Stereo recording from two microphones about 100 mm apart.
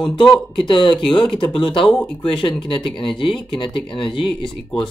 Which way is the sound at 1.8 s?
5° left (ahead or behind).